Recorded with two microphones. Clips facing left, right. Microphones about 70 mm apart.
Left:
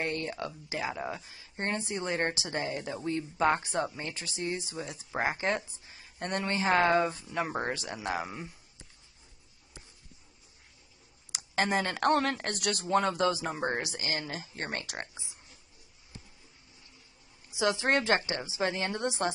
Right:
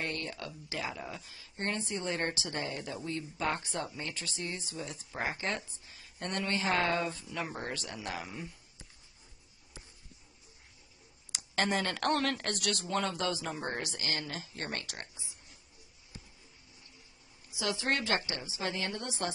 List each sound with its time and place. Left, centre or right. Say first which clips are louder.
0.0 s speech: left 4 dB; left
11.3 s speech: left 3 dB; centre
17.6 s speech: left 5 dB; left